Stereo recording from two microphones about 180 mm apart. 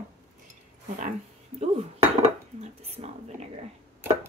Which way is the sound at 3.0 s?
35° right (ahead or behind).